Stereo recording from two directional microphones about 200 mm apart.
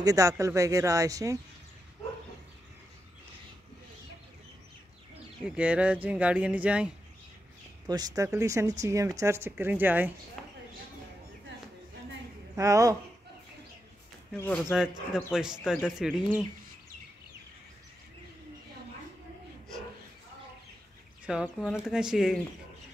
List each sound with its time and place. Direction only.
0.0 s speech: 15° right (ahead or behind)
5.4 s speech: 5° right (ahead or behind)
7.9 s speech: 20° right (ahead or behind)
12.5 s speech: 15° right (ahead or behind)
14.3 s speech: 10° left (ahead or behind)
14.7 s speech: centre (ahead or behind)
21.3 s speech: centre (ahead or behind)